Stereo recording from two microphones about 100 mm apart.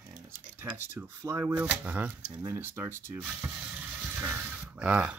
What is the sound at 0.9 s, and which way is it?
Speech, 30° right (ahead or behind).